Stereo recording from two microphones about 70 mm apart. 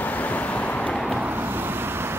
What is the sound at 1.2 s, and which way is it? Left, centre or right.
Vehicle, right.